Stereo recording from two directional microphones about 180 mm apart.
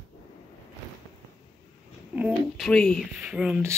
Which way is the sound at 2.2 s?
5° right (ahead or behind).